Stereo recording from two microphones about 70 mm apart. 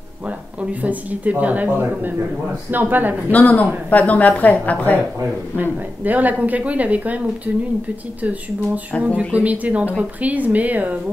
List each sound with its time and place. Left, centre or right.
0.6 s a woman's voice: right
3.3 s a woman's voice: left
5.6 s a woman's voice: right
8.9 s a woman's voice: centre
9.3 s a woman's voice: right